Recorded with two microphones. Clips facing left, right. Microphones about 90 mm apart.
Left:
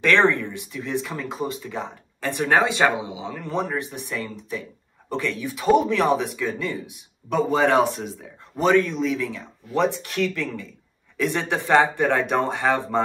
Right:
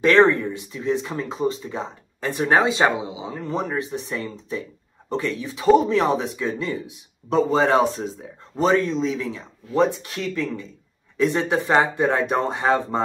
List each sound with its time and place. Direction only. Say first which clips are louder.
0.0 s speech: right 3 dB; 20° right (ahead or behind)